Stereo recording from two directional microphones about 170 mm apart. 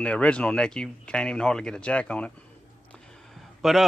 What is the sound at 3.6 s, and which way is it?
Speech, centre (ahead or behind).